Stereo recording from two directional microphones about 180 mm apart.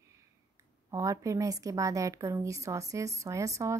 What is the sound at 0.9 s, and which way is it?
Speech, 20° right (ahead or behind).